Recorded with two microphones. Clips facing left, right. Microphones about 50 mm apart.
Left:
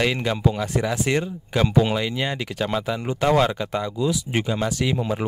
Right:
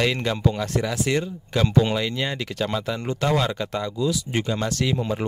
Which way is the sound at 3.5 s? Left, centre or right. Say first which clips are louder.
Left 1 dB; centre.